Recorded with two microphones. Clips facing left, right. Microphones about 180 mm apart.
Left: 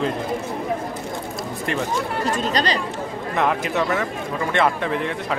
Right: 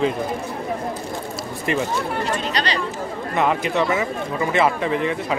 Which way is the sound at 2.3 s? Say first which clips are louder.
Left 2 dB; 45° left (ahead or behind).